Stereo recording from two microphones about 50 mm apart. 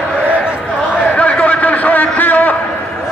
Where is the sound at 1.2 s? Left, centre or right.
Left.